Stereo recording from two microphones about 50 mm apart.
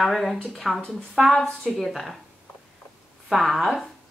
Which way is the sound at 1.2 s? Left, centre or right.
Centre.